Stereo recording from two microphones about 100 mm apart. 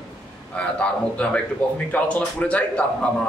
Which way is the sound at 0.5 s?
10° left (ahead or behind).